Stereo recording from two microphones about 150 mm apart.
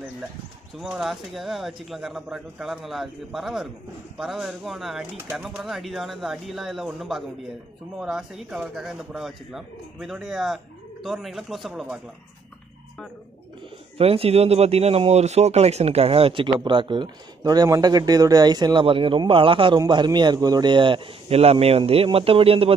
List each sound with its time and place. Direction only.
0.7 s speech: centre (ahead or behind)
13.9 s speech: 40° right (ahead or behind)